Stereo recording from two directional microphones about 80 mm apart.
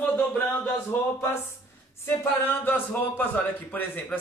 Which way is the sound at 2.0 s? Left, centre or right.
Left.